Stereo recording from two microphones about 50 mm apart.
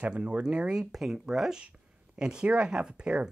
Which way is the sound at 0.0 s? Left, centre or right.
Right.